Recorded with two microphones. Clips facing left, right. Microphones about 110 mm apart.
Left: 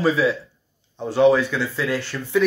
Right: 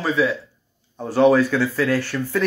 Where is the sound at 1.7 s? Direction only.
15° left (ahead or behind).